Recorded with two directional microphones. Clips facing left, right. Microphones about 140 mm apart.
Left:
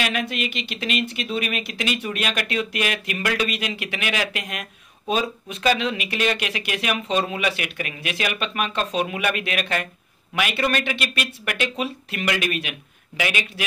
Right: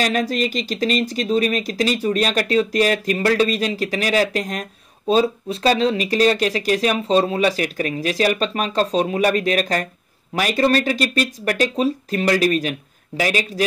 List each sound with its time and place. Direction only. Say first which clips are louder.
0.0 s speech: right 6 dB; 40° right (ahead or behind)